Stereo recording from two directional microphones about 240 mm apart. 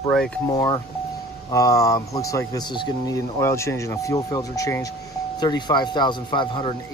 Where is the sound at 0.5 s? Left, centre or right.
Centre.